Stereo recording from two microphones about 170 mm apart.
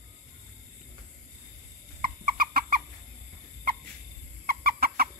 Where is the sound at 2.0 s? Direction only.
60° right (ahead or behind).